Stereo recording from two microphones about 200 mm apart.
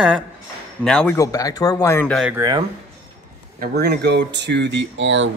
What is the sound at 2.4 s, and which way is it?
Speech, 20° right (ahead or behind).